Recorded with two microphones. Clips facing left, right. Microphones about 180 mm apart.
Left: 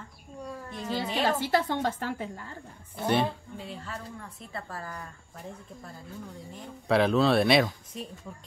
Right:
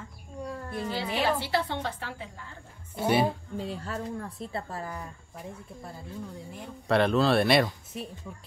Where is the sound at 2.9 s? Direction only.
10° right (ahead or behind).